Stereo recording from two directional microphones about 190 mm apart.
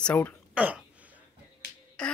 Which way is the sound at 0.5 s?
5° right (ahead or behind).